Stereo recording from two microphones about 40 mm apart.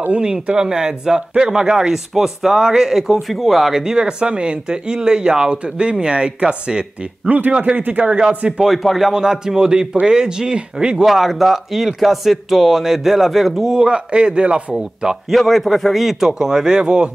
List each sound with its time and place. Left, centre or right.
0.6 s speech: centre
3.7 s speech: centre
7.2 s speech: right
7.5 s speech: right
8.6 s speech: centre
9.1 s speech: centre
11.1 s speech: centre
13.7 s speech: right
15.2 s speech: centre
16.3 s speech: centre